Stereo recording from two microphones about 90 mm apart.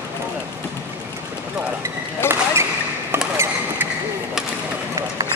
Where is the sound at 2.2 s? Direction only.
25° left (ahead or behind).